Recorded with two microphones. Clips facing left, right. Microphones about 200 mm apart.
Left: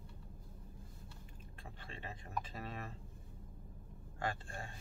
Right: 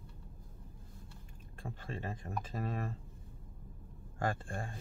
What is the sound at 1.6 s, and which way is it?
Speech, 45° right (ahead or behind).